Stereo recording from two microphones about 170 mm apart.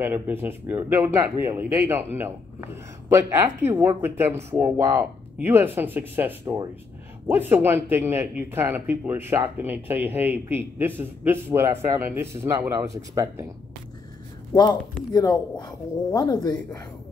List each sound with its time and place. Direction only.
0.0 s speech: 10° right (ahead or behind)
14.5 s speech: 25° left (ahead or behind)